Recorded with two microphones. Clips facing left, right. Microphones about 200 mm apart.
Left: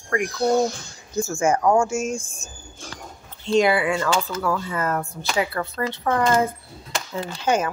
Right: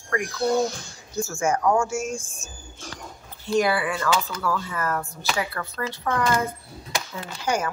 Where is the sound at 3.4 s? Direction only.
25° left (ahead or behind).